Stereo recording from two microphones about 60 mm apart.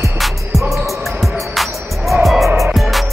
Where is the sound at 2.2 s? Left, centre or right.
Centre.